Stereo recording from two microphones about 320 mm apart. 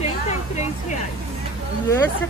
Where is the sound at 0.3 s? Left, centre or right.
Left.